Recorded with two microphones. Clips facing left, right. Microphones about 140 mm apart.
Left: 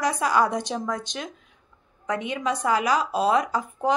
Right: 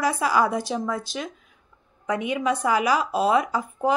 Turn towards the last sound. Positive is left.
turn(degrees=-10)  # may be behind; listen again after turning